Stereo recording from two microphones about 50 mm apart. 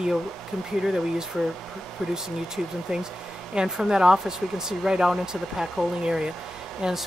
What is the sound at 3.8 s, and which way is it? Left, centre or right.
Speech, centre.